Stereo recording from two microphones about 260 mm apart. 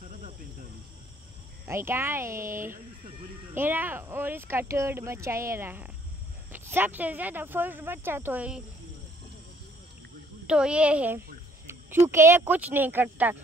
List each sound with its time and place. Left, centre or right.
0.0 s cricket: right
1.7 s speech: centre
10.4 s speech: centre